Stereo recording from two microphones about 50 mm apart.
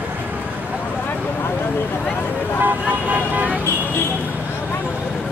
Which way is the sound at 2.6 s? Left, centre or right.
Right.